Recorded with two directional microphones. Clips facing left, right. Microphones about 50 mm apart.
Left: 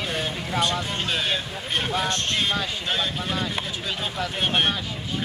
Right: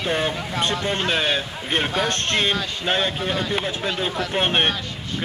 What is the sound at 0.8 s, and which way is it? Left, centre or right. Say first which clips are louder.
Speech: right 5 dB; right.